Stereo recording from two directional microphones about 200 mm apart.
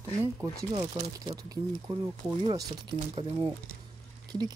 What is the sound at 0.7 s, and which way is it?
Speech, 20° right (ahead or behind).